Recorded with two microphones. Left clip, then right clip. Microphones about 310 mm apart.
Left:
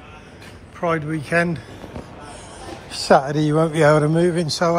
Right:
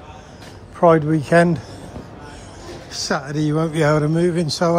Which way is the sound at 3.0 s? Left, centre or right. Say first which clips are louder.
Left 7 dB; centre.